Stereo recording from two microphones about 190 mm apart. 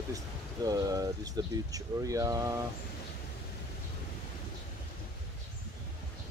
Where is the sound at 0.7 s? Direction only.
20° right (ahead or behind).